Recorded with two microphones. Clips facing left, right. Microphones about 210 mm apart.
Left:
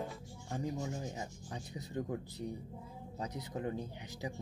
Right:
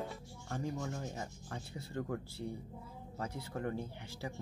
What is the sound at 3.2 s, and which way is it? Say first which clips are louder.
Speech: even; 15° left (ahead or behind).